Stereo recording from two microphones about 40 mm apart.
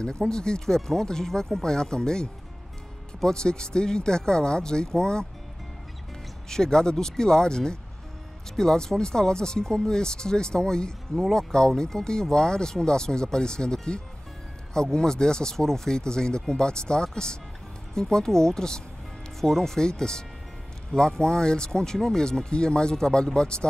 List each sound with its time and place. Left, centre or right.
0.3 s speech: centre
6.5 s speech: centre